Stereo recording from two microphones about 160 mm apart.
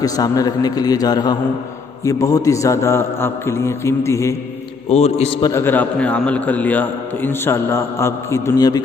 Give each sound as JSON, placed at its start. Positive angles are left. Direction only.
{"t": 0.0, "sound": "a man's voice", "side_deg": 20}
{"t": 4.8, "sound": "a man's voice", "side_deg": 40}
{"t": 5.4, "sound": "a man's voice", "side_deg": 15}